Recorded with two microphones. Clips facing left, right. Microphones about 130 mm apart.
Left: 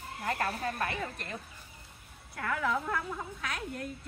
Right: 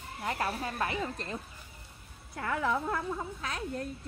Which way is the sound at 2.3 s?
25° right (ahead or behind).